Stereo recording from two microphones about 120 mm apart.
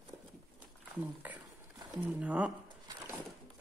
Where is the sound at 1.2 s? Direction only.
15° right (ahead or behind).